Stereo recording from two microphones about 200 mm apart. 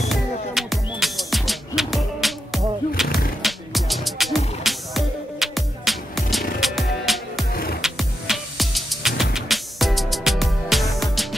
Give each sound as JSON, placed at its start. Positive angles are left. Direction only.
{"t": 0.1, "sound": "music", "side_deg": 0}
{"t": 3.0, "sound": "a sound", "side_deg": 0}
{"t": 3.4, "sound": "music", "side_deg": 0}
{"t": 7.5, "sound": "music", "side_deg": 50}
{"t": 7.8, "sound": "music", "side_deg": 0}